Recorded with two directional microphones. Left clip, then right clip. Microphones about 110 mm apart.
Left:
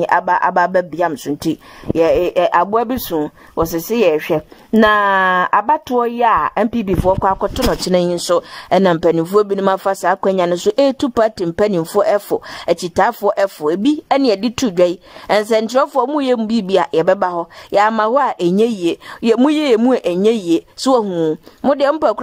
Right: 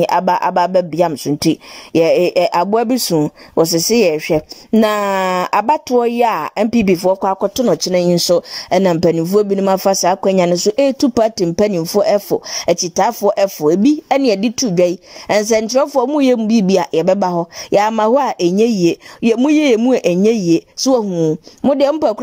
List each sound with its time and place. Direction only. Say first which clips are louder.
0.0 s speech: even; 20° right (ahead or behind)
21.1 s speech: right 1 dB; 10° right (ahead or behind)
21.6 s speech: even; 35° right (ahead or behind)